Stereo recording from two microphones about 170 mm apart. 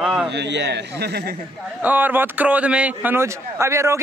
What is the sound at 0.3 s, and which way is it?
Speech, 90° right.